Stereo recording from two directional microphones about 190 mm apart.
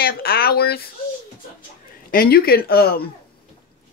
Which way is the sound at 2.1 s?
50° left (ahead or behind).